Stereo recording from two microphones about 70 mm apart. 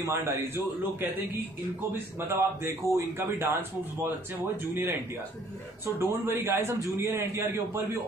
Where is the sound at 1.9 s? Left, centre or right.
Right.